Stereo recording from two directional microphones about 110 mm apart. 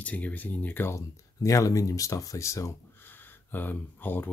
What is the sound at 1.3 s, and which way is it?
Speech, 30° left (ahead or behind).